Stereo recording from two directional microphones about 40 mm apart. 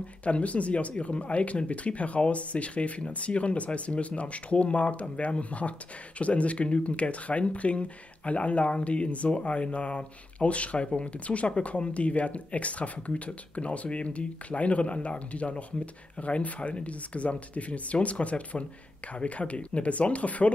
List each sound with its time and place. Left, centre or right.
0.2 s speech: left